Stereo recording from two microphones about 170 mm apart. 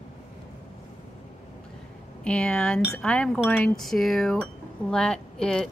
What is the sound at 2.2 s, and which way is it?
Speech, 5° left (ahead or behind).